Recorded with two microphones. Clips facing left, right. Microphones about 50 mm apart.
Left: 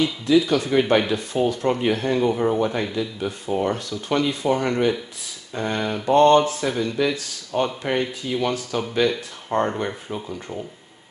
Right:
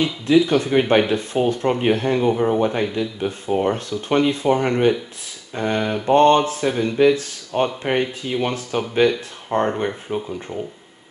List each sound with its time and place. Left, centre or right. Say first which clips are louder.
0.0 s speech: right 2 dB; right
9.1 s speech: right 2 dB; centre